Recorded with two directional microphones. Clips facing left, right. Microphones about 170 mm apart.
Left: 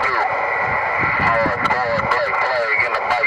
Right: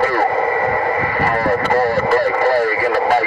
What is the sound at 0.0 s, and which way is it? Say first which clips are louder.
Radio: right 5 dB; 50° right (ahead or behind).